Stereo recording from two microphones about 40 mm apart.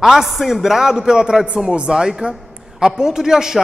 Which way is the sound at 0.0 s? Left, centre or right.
Centre.